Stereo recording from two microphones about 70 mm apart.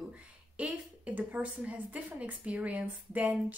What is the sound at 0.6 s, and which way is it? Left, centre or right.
A woman's voice, right.